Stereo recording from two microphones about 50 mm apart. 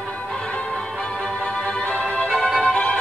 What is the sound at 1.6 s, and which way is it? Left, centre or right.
Music, left.